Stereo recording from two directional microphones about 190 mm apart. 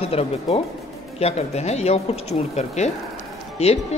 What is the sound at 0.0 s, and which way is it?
Speech, 30° left (ahead or behind).